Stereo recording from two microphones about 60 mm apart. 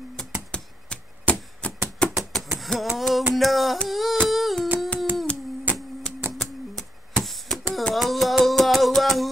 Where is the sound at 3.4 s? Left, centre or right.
Centre.